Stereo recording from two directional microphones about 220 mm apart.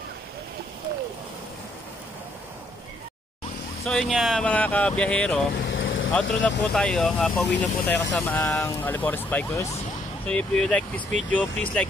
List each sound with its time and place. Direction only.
3.8 s speech: centre (ahead or behind)
5.6 s vehicle: 60° left (ahead or behind)
6.1 s speech: 5° left (ahead or behind)